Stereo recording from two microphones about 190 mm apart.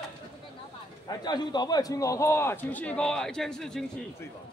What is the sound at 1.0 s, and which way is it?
A man's voice, 20° left (ahead or behind).